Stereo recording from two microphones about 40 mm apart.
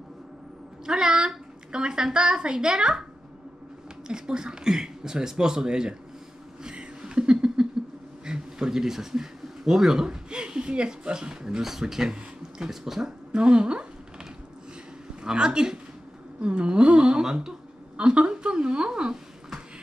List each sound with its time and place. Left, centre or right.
0.8 s a woman's voice: centre
4.1 s speech: centre
6.6 s a sound: right
8.3 s speech: centre
15.2 s a woman's voice: right
17.9 s a woman's voice: right